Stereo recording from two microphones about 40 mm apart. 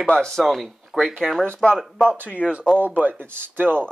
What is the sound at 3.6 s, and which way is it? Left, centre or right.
Speech, right.